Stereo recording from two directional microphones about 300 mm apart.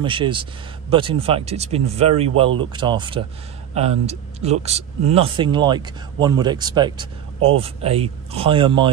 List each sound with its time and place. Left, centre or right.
0.0 s speech: centre